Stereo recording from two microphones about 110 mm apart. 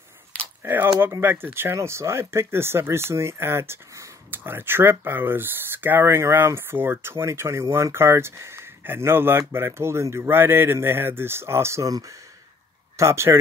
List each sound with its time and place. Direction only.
0.7 s speech: 20° right (ahead or behind)